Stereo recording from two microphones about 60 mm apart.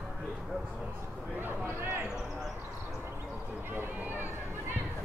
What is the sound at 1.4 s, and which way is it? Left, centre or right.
Speech, right.